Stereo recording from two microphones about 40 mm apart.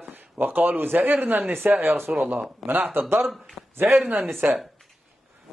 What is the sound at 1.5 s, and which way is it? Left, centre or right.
Speech, right.